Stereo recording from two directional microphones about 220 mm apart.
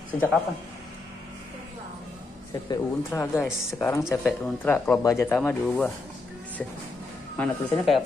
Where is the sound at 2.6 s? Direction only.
15° left (ahead or behind).